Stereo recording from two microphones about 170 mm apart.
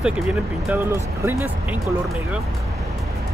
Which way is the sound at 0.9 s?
15° right (ahead or behind).